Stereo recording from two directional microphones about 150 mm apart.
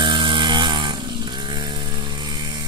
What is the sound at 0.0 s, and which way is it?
Music, 30° right (ahead or behind).